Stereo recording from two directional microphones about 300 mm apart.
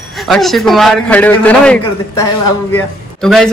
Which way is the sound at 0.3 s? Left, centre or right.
Centre.